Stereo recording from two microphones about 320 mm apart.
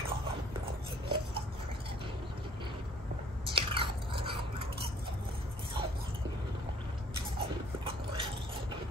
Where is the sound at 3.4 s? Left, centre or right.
Centre.